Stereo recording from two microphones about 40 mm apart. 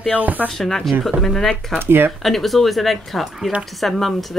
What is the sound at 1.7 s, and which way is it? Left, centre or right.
Speech, right.